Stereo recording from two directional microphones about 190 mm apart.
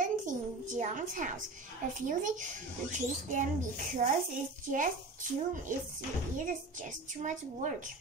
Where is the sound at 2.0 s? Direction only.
45° right (ahead or behind).